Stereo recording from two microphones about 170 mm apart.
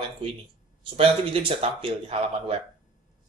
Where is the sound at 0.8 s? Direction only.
35° right (ahead or behind).